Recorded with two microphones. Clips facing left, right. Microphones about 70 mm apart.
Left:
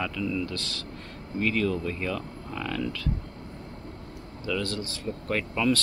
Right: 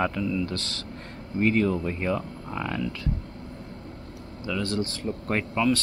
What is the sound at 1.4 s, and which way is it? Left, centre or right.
Speech, right.